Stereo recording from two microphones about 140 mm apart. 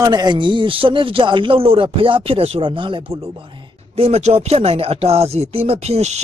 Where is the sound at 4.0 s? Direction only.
50° right (ahead or behind).